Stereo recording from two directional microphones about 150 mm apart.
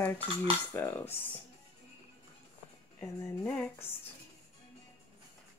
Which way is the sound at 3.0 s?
10° left (ahead or behind).